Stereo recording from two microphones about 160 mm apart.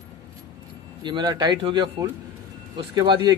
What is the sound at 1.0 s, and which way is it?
A man's voice, 25° right (ahead or behind).